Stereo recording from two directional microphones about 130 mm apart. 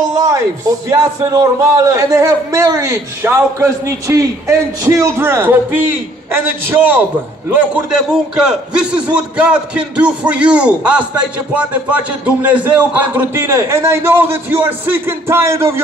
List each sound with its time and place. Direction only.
0.2 s a man's voice: 25° right (ahead or behind)